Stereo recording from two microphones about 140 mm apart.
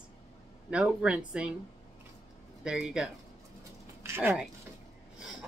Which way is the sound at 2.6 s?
5° right (ahead or behind).